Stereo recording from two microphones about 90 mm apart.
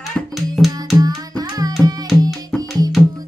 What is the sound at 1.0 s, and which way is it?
Music, 45° right (ahead or behind).